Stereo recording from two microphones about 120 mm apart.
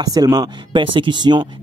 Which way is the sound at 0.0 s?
30° right (ahead or behind).